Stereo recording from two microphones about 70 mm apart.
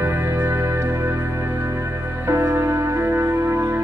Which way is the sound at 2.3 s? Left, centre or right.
Right.